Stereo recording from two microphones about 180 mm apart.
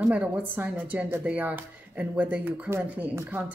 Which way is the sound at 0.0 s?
5° right (ahead or behind).